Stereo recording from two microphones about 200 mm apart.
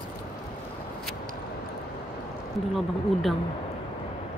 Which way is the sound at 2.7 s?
Centre (ahead or behind).